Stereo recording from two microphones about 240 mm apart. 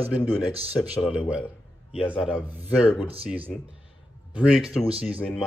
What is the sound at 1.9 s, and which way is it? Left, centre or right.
A man's voice, centre.